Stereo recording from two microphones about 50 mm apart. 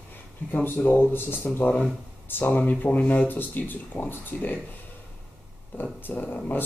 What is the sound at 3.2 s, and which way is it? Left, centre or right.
Speech, left.